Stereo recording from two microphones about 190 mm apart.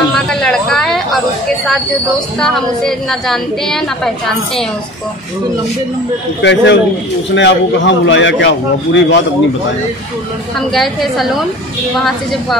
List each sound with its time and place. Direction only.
0.1 s a sound: 5° left (ahead or behind)
2.4 s a woman's voice: centre (ahead or behind)
6.4 s a man's voice: 70° left (ahead or behind)
10.7 s a woman's voice: centre (ahead or behind)